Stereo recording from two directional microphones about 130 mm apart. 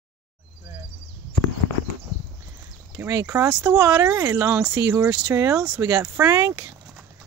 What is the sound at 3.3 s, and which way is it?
Speech, 15° right (ahead or behind).